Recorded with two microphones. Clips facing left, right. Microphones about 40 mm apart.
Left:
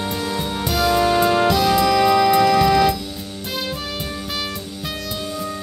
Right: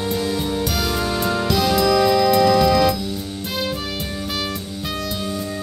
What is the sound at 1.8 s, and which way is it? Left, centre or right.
Music, left.